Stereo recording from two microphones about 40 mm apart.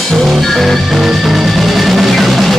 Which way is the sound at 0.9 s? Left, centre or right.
Centre.